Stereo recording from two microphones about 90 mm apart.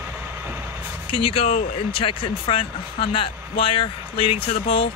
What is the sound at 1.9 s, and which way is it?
Speech, 70° left (ahead or behind).